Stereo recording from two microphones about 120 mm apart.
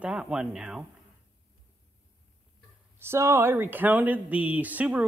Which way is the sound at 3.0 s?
20° right (ahead or behind).